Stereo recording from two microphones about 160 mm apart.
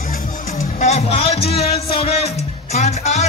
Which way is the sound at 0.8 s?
45° left (ahead or behind).